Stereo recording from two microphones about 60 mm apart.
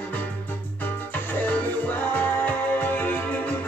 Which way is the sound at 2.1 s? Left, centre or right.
Left.